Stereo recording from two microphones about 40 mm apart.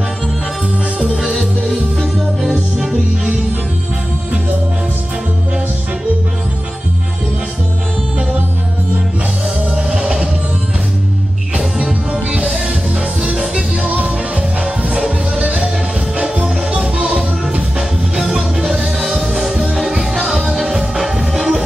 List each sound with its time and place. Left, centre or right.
0.9 s music: centre
9.8 s music: right
11.5 s music: right
13.4 s music: right
15.0 s music: centre
15.4 s music: right
18.1 s music: centre